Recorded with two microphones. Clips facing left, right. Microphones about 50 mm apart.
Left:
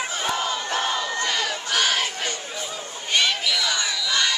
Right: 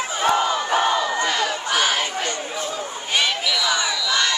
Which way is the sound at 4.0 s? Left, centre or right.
Centre.